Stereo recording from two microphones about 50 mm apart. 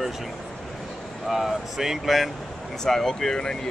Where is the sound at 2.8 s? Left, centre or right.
Centre.